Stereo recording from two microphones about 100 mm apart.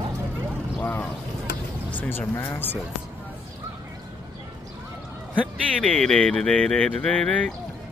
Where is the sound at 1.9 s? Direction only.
20° left (ahead or behind).